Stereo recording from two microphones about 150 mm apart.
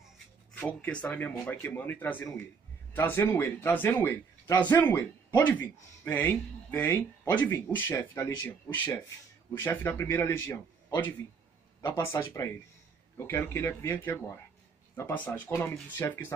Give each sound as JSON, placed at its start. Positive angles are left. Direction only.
{"t": 0.6, "sound": "speech", "side_deg": 10}
{"t": 11.8, "sound": "speech", "side_deg": 20}